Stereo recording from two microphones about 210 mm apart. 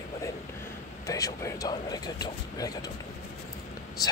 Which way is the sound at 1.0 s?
15° left (ahead or behind).